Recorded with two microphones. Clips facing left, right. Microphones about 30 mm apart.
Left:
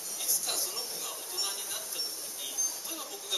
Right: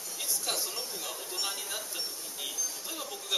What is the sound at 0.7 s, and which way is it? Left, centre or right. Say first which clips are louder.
Speech: right 1 dB; centre.